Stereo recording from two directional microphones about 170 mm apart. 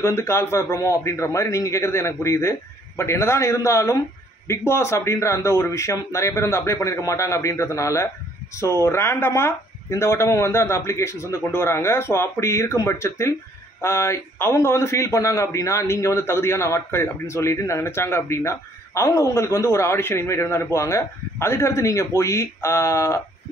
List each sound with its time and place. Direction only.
0.0 s a man's voice: 15° left (ahead or behind)